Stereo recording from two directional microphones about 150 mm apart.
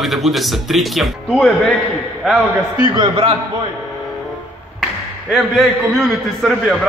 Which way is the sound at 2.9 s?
35° right (ahead or behind).